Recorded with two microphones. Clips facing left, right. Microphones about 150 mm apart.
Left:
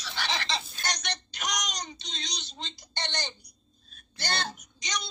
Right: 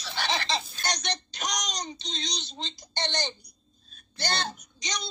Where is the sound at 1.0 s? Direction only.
35° right (ahead or behind).